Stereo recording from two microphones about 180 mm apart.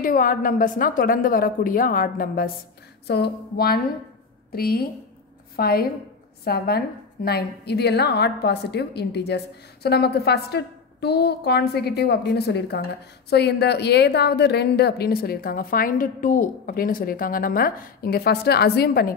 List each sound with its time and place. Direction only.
0.0 s a woman's voice: 50° left (ahead or behind)